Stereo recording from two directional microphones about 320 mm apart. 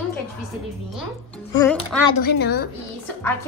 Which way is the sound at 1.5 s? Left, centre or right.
Centre.